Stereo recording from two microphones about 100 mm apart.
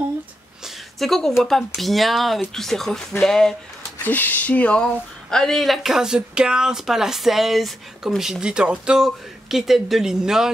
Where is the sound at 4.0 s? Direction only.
20° left (ahead or behind).